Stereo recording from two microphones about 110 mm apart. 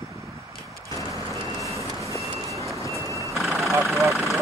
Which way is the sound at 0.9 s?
30° left (ahead or behind).